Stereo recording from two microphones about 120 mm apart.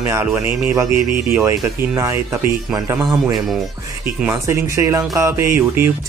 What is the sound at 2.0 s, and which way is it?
Speech, 25° right (ahead or behind).